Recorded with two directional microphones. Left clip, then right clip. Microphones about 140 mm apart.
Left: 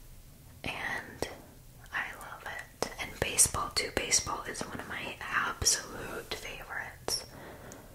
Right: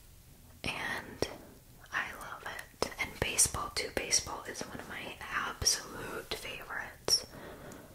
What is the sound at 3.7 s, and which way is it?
Speech, 25° left (ahead or behind).